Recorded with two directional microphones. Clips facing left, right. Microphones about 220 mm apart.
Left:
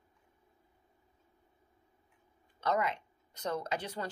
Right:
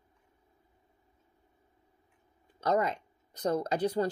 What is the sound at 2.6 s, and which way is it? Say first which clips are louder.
Speech: right 4 dB; 40° right (ahead or behind).